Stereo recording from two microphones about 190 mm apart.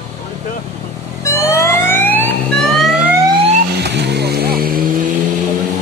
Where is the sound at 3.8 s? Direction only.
60° right (ahead or behind).